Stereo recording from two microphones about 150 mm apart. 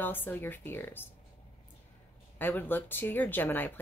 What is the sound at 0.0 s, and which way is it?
Speech, 15° left (ahead or behind).